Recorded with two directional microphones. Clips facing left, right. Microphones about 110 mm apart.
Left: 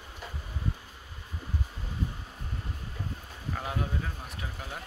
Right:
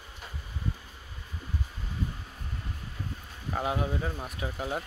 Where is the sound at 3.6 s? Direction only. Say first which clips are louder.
Right 5 dB; 15° right (ahead or behind).